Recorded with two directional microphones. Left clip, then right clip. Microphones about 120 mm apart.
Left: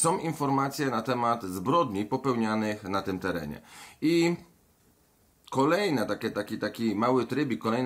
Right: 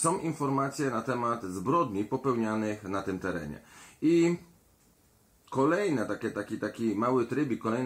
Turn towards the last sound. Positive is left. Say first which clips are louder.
# left 2 dB
turn(degrees=20)  # may be behind; listen again after turning